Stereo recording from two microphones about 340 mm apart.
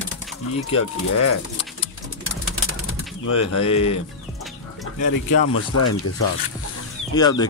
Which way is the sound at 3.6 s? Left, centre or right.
Centre.